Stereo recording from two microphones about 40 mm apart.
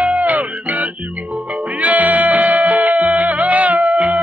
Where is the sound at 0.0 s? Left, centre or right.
Right.